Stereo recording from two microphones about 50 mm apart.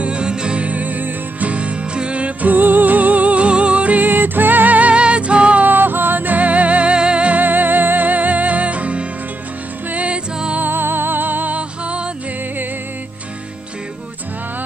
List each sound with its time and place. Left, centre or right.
0.0 s music: centre
5.7 s music: right
10.6 s music: right